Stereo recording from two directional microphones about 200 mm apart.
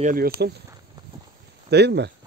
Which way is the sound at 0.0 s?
45° right (ahead or behind).